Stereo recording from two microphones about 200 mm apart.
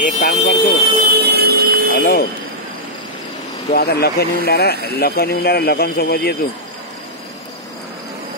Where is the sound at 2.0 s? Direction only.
50° left (ahead or behind).